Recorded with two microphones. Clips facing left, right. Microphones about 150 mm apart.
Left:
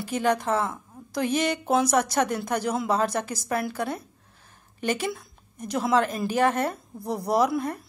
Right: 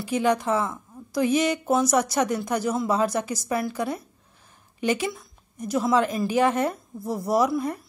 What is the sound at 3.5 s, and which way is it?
Speech, 55° left (ahead or behind).